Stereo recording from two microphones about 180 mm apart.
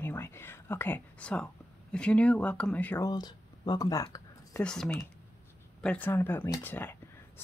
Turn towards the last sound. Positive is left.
turn(degrees=10)  # may be behind; listen again after turning